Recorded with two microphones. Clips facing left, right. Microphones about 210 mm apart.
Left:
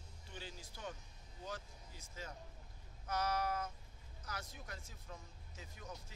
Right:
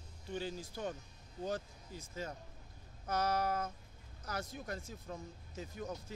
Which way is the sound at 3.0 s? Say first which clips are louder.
Right 4 dB; 45° right (ahead or behind).